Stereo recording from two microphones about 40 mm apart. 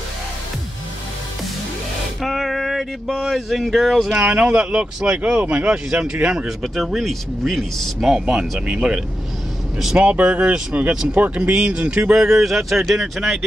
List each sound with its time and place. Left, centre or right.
2.2 s music: centre
3.1 s speech: centre
3.3 s speech: centre
4.1 s speech: right
6.6 s speech: centre
8.3 s speech: right
12.2 s speech: centre